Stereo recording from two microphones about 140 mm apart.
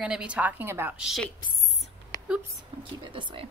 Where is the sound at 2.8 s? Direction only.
35° right (ahead or behind).